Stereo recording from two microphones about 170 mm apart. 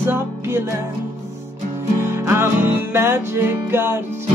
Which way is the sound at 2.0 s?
15° right (ahead or behind).